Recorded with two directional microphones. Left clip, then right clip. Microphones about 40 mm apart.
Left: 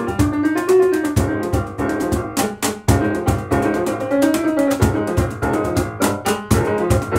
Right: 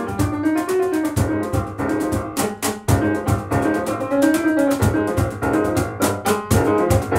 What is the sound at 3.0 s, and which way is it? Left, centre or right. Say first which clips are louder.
Music: left 1 dB; centre.